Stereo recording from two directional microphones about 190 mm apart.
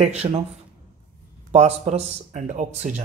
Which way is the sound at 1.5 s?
35° right (ahead or behind).